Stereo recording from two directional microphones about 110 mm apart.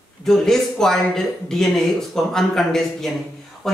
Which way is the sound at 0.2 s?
5° left (ahead or behind).